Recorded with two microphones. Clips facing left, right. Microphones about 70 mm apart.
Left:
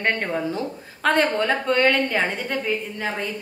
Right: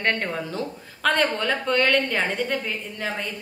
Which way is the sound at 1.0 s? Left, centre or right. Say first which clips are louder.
Left 2 dB; left.